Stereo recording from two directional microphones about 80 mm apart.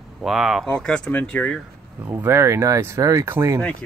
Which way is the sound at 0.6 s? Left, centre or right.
Centre.